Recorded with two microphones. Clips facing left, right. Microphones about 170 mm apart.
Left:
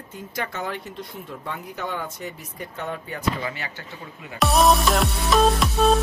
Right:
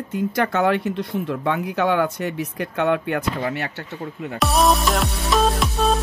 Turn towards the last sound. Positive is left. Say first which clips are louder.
# left 1 dB
turn(degrees=0)  # may be behind; listen again after turning